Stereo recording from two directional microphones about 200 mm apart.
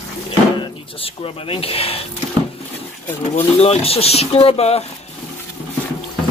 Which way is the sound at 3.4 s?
30° left (ahead or behind).